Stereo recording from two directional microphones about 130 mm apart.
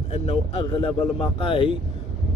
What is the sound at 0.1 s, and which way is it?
Speech, 50° left (ahead or behind).